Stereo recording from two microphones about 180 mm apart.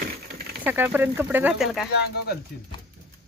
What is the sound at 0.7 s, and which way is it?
Speech, 10° right (ahead or behind).